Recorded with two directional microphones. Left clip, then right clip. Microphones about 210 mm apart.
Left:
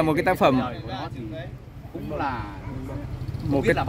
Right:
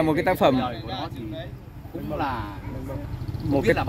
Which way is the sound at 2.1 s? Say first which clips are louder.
Even; 15° right (ahead or behind).